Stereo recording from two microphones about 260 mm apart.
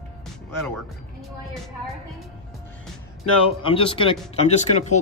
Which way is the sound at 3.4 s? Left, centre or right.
Left.